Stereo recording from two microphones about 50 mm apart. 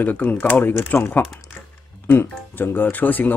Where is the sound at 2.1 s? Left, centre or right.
Left.